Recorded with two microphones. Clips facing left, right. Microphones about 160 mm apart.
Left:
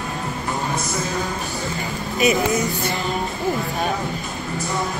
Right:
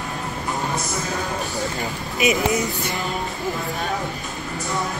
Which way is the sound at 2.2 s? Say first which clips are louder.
Left 1 dB; 20° right (ahead or behind).